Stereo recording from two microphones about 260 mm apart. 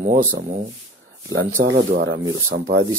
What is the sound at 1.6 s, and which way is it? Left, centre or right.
Speech, right.